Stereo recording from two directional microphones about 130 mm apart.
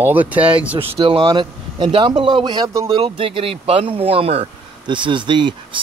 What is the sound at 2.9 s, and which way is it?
Speech, 45° right (ahead or behind).